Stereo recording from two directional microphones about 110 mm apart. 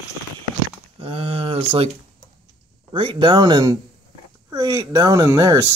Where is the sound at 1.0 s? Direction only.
60° right (ahead or behind).